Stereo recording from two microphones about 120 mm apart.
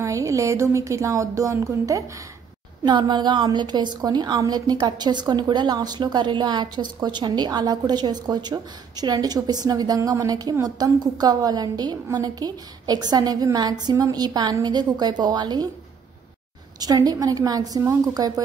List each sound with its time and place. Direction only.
0.0 s speech: 25° right (ahead or behind)
2.8 s a woman's voice: 40° right (ahead or behind)
16.8 s a woman's voice: 30° right (ahead or behind)